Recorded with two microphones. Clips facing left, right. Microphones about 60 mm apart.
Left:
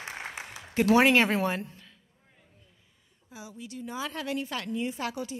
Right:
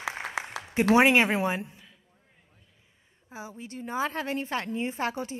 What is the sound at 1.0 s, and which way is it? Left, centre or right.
Speech, centre.